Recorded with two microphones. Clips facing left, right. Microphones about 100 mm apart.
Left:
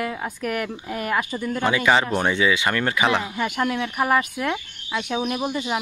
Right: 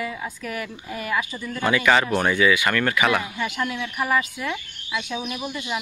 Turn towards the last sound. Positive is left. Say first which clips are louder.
# left 5 dB
turn(degrees=40)  # may be behind; listen again after turning